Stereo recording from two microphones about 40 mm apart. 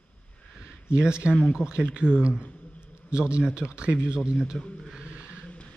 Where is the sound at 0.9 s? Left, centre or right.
Right.